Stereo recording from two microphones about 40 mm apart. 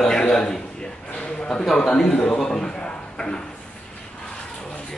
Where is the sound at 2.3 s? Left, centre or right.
Centre.